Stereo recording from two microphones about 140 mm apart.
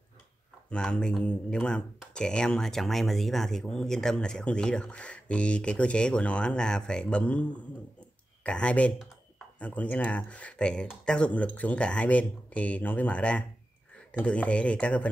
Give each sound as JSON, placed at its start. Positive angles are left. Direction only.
{"t": 0.7, "sound": "speech", "side_deg": 5}